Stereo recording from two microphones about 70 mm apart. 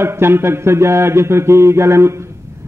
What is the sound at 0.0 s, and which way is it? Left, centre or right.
A man's voice, right.